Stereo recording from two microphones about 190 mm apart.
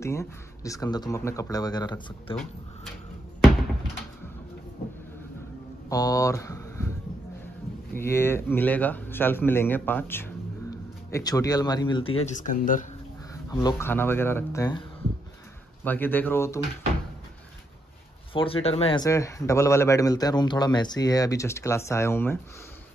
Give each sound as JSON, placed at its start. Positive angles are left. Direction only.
{"t": 0.0, "sound": "speech", "side_deg": 15}
{"t": 5.9, "sound": "speech", "side_deg": 20}
{"t": 7.9, "sound": "speech", "side_deg": 10}
{"t": 12.4, "sound": "speech", "side_deg": 45}
{"t": 13.3, "sound": "speech", "side_deg": 20}
{"t": 15.8, "sound": "speech", "side_deg": 10}
{"t": 18.3, "sound": "speech", "side_deg": 30}
{"t": 19.0, "sound": "speech", "side_deg": 15}